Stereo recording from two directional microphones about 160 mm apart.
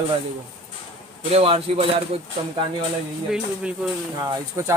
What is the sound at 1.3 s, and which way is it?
Speech, 35° right (ahead or behind).